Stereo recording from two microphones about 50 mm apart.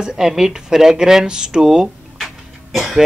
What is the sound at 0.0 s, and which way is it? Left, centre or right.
Speech, centre.